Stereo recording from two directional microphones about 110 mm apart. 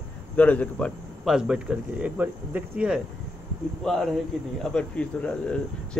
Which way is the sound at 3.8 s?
5° left (ahead or behind).